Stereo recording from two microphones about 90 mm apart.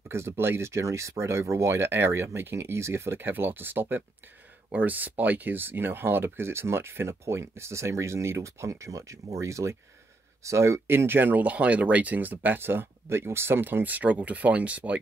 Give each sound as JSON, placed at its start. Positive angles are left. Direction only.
{"t": 0.1, "sound": "speech", "side_deg": -30}